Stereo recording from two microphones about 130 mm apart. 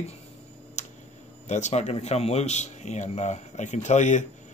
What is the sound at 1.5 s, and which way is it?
Speech, 65° left (ahead or behind).